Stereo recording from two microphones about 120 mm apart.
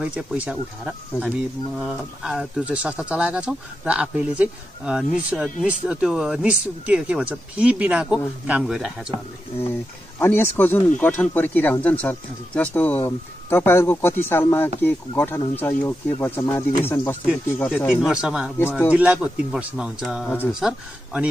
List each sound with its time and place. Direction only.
0.0 s speech: 10° right (ahead or behind)
9.6 s speech: 20° left (ahead or behind)
18.0 s speech: 5° right (ahead or behind)